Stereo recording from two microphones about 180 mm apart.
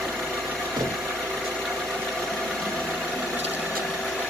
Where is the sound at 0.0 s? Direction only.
Centre (ahead or behind).